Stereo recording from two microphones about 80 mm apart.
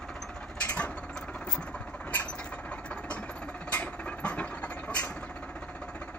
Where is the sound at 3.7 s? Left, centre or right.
Centre.